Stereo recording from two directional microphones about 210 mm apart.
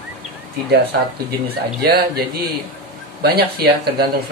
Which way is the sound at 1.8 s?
50° right (ahead or behind).